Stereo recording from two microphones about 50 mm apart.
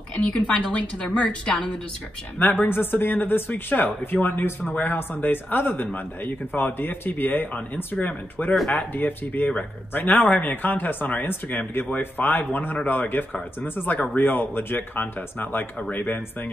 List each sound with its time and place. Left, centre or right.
0.1 s a woman's voice: centre
2.3 s speech: left